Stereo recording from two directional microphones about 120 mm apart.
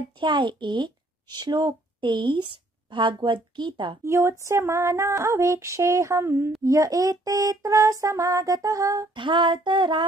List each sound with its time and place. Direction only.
0.2 s a woman's voice: 40° right (ahead or behind)
4.0 s female singing: 25° right (ahead or behind)
9.1 s female singing: 40° right (ahead or behind)